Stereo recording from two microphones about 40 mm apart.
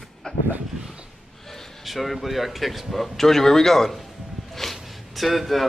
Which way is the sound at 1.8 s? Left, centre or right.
Centre.